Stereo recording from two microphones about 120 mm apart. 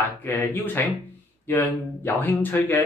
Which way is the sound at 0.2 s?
15° left (ahead or behind).